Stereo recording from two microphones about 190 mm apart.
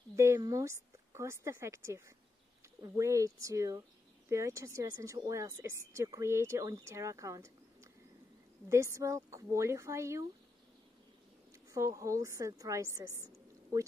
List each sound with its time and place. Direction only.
0.1 s speech: 15° right (ahead or behind)
11.7 s a woman's voice: 15° right (ahead or behind)